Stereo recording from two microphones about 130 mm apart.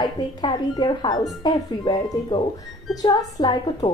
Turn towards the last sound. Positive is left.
turn(degrees=35)  # may be behind; listen again after turning